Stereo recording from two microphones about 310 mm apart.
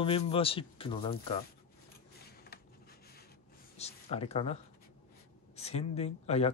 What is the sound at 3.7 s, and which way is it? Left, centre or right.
Speech, centre.